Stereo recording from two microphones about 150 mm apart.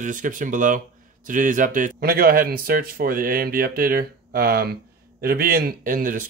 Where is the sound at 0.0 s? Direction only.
65° right (ahead or behind).